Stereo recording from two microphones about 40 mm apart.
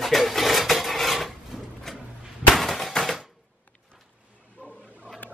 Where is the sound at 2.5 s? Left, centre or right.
Centre.